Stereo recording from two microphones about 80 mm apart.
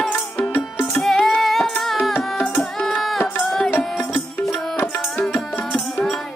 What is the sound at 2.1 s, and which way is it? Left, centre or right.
Music, centre.